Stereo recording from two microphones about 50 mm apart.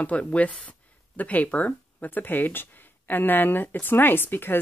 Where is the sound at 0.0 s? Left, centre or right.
Left.